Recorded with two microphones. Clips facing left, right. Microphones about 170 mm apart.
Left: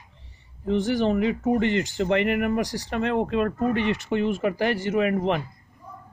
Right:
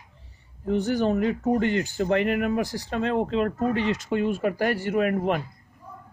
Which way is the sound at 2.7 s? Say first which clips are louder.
Left 1 dB; 75° left (ahead or behind).